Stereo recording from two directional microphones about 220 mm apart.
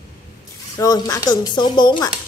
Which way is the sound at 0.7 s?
15° left (ahead or behind).